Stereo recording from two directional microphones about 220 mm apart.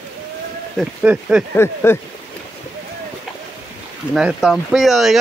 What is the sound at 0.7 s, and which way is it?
Speech, 5° right (ahead or behind).